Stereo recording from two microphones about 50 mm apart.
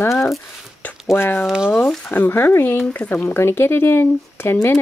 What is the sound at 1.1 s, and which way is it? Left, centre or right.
Speech, left.